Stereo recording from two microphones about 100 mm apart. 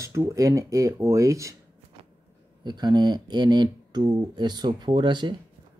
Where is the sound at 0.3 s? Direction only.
35° right (ahead or behind).